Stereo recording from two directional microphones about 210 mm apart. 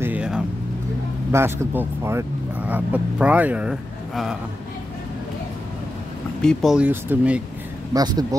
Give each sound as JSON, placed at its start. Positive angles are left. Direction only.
{"t": 0.0, "sound": "vehicle", "side_deg": -5}
{"t": 1.3, "sound": "speech", "side_deg": -10}
{"t": 6.4, "sound": "speech", "side_deg": 0}
{"t": 7.9, "sound": "speech", "side_deg": -20}